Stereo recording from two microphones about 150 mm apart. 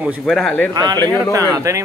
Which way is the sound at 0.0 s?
Centre (ahead or behind).